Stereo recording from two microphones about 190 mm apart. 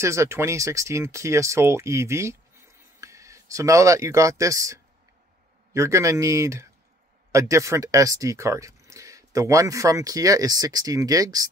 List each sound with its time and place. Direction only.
0.0 s speech: 15° right (ahead or behind)